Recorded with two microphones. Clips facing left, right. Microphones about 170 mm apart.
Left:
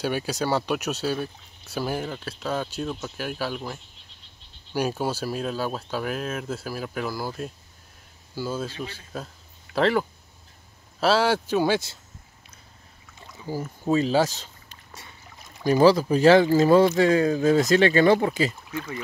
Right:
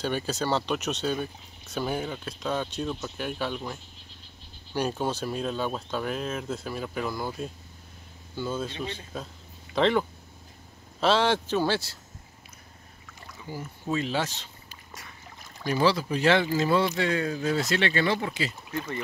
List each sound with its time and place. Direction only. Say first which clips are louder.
0.0 s speech: left 2 dB; 10° left (ahead or behind)
13.5 s speech: left 7 dB; 40° left (ahead or behind)
15.6 s speech: left 7 dB; 40° left (ahead or behind)